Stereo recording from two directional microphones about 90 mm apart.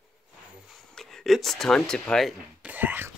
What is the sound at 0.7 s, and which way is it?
Speech, 5° left (ahead or behind).